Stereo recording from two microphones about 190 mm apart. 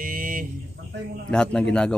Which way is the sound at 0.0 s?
45° right (ahead or behind).